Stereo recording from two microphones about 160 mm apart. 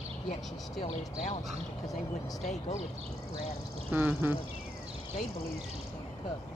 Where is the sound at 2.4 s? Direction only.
45° left (ahead or behind).